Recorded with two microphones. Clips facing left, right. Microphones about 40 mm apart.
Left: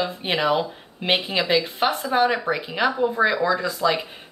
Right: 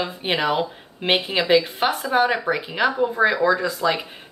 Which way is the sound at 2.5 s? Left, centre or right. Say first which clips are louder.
Right 1 dB; centre.